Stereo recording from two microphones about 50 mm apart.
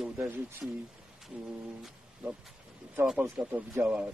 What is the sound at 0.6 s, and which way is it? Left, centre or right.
Speech, centre.